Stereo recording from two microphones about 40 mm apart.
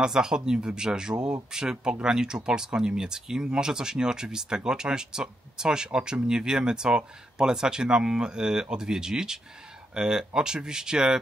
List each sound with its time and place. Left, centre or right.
0.0 s speech: centre